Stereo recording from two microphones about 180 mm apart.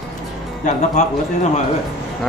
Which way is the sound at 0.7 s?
40° left (ahead or behind).